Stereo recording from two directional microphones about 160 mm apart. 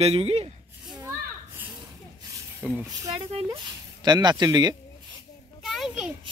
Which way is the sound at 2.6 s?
5° left (ahead or behind).